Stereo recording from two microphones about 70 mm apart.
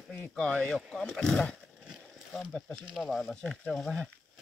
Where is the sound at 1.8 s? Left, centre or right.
Centre.